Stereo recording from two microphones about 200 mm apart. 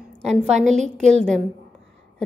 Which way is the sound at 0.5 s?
35° right (ahead or behind).